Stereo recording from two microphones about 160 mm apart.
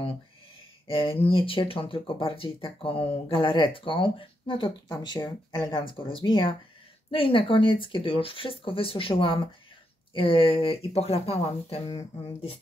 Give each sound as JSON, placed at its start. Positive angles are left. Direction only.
{"t": 0.8, "sound": "speech", "side_deg": 35}